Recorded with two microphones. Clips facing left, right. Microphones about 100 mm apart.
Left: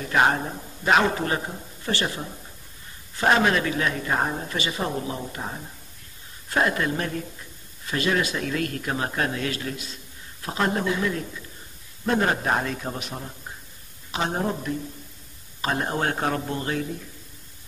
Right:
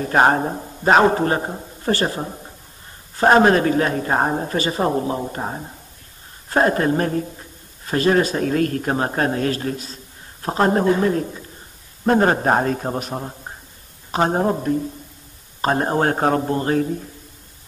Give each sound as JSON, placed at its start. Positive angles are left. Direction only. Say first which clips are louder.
{"t": 0.0, "sound": "a woman's voice", "louder": "right 5 dB", "side_deg": -40}